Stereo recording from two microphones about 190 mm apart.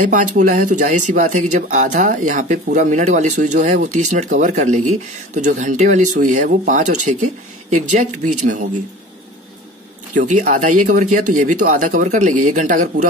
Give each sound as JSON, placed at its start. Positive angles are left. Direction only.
{"t": 0.0, "sound": "speech", "side_deg": -40}
{"t": 10.1, "sound": "speech", "side_deg": -40}